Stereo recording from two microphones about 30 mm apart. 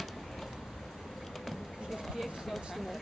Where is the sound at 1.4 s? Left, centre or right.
Centre.